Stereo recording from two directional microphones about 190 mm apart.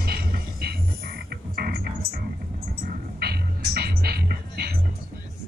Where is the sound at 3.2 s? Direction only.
55° right (ahead or behind).